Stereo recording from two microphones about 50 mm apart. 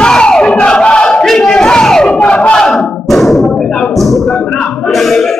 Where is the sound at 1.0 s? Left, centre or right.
Centre.